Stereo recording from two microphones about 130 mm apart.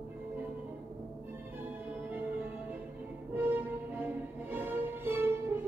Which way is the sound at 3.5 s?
15° right (ahead or behind).